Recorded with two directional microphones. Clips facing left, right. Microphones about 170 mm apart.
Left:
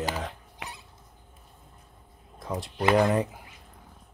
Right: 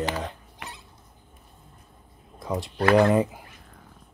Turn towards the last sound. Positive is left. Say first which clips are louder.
# right 4 dB
turn(degrees=0)  # may be behind; listen again after turning